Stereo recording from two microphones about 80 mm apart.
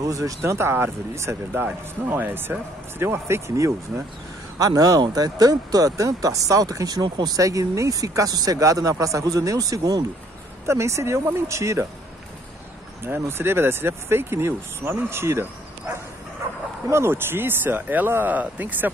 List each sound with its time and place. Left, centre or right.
0.0 s speech: right
0.4 s speech: right
4.6 s speech: right
10.7 s speech: right
13.3 s speech: right
16.9 s speech: right